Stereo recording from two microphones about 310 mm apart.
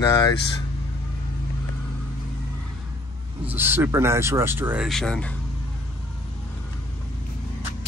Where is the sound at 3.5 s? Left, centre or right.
Centre.